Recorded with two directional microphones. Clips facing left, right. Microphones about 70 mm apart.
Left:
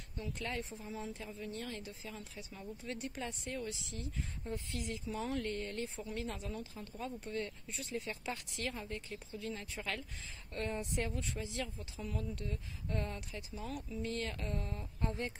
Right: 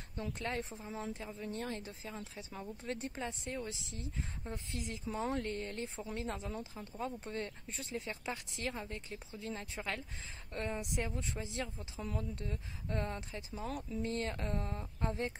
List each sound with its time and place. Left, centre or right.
0.1 s speech: right
10.7 s speech: centre